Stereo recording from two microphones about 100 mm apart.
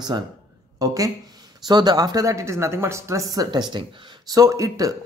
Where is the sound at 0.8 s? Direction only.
35° right (ahead or behind).